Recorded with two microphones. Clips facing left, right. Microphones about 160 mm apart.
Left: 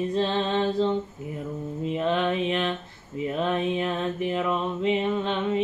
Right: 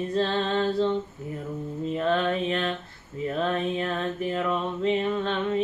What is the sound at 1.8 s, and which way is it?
Mantra, 15° left (ahead or behind).